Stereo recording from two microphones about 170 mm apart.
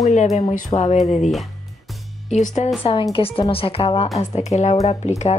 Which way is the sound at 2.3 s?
45° left (ahead or behind).